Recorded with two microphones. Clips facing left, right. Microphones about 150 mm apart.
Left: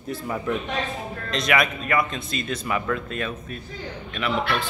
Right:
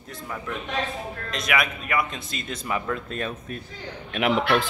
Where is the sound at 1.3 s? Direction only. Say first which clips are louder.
Left 4 dB; 5° right (ahead or behind); by 3.0 s 25° right (ahead or behind).